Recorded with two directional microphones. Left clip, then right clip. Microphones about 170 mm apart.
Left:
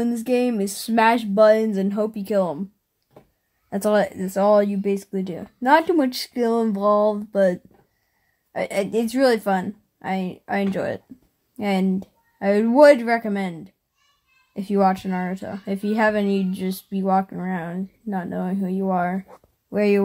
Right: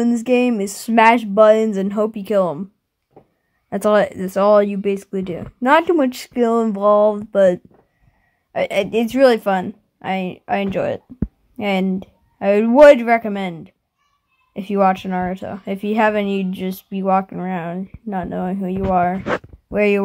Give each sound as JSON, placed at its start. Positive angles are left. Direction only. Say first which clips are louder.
{"t": 0.0, "sound": "speech", "louder": "right 5 dB", "side_deg": -50}
{"t": 3.7, "sound": "speech", "louder": "right 5 dB", "side_deg": -60}
{"t": 8.5, "sound": "speech", "louder": "right 5 dB", "side_deg": -45}